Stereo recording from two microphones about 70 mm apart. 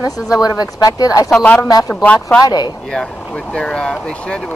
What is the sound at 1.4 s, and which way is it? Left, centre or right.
Speech, centre.